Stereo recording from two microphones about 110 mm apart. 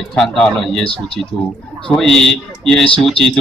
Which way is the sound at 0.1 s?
5° left (ahead or behind).